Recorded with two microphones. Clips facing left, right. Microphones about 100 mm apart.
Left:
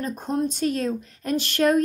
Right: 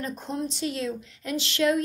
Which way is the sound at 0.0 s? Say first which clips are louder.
Left 5 dB; 50° left (ahead or behind).